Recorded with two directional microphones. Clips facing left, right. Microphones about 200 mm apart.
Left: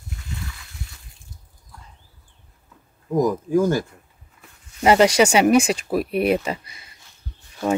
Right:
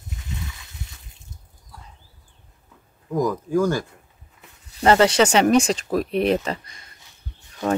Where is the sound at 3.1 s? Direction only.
20° left (ahead or behind).